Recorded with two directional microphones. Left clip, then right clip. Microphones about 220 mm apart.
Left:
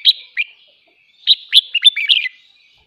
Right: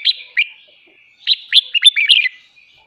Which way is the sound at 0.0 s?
5° left (ahead or behind).